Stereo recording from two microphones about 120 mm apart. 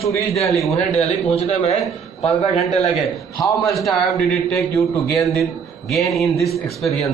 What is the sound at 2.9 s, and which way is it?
A man's voice, centre (ahead or behind).